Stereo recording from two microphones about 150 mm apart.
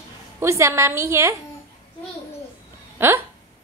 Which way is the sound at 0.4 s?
20° right (ahead or behind).